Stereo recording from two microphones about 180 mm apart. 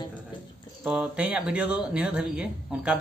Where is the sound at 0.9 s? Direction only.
5° right (ahead or behind).